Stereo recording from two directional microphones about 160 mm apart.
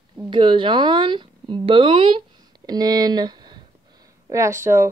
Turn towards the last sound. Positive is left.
turn(degrees=-15)  # may be behind; listen again after turning